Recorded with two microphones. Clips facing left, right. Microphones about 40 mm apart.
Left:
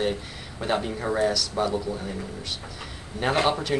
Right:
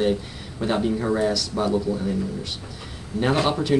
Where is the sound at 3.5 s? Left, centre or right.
Centre.